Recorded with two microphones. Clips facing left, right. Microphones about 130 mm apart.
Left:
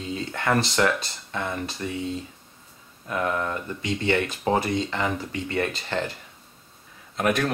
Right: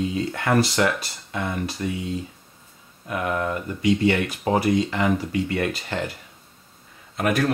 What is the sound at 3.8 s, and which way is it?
Speech, 25° left (ahead or behind).